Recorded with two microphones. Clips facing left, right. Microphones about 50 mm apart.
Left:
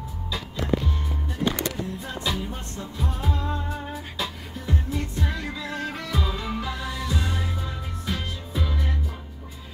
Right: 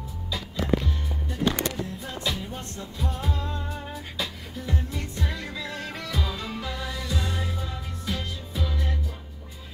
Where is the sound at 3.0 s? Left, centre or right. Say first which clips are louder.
Left 2 dB; centre.